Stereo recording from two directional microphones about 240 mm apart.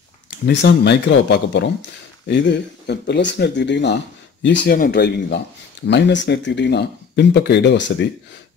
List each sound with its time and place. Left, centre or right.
0.5 s speech: left